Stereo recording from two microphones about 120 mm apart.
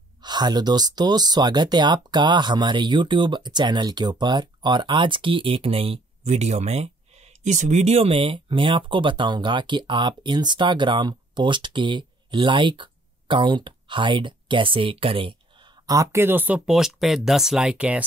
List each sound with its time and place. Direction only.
0.2 s speech: 35° right (ahead or behind)
15.9 s speech: 25° right (ahead or behind); by 18.0 s 10° right (ahead or behind)